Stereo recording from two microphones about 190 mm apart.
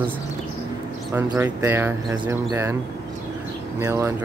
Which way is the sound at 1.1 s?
10° right (ahead or behind).